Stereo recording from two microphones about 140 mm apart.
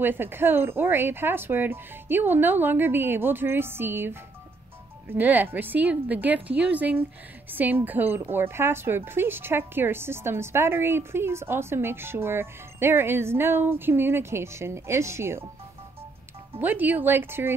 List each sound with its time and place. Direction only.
0.0 s a woman's voice: 15° right (ahead or behind)
16.5 s a woman's voice: 15° right (ahead or behind)